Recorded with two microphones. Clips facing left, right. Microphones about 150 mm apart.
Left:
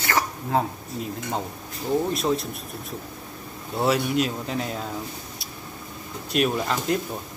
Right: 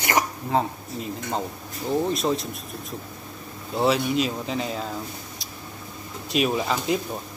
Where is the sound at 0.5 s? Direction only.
Centre (ahead or behind).